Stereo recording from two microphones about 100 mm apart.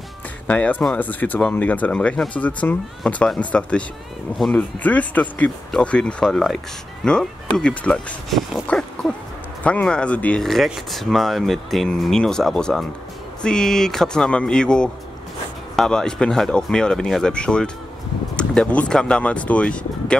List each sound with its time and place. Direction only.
0.5 s speech: 15° left (ahead or behind)
10.4 s speech: centre (ahead or behind)